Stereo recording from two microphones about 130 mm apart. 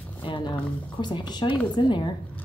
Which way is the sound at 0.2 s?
40° left (ahead or behind).